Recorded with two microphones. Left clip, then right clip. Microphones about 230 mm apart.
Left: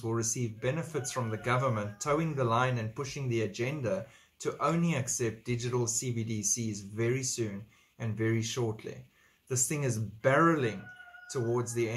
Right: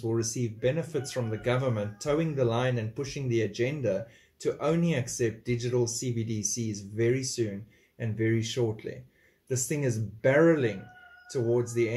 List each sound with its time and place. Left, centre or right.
0.1 s speech: centre